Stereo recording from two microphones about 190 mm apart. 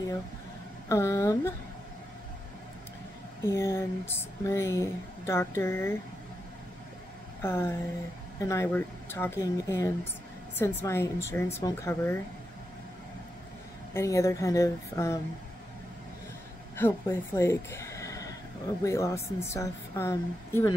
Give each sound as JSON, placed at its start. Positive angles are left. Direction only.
{"t": 0.8, "sound": "speech", "side_deg": 15}
{"t": 3.4, "sound": "speech", "side_deg": 15}
{"t": 7.4, "sound": "speech", "side_deg": 10}
{"t": 13.9, "sound": "speech", "side_deg": 15}
{"t": 16.7, "sound": "speech", "side_deg": 10}